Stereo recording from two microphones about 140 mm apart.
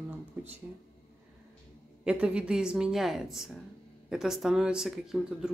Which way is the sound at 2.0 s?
10° right (ahead or behind).